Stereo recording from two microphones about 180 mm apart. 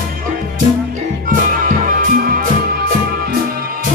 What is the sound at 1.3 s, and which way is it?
Music, 50° right (ahead or behind).